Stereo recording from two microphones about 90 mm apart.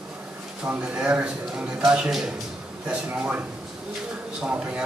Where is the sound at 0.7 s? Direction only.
15° right (ahead or behind).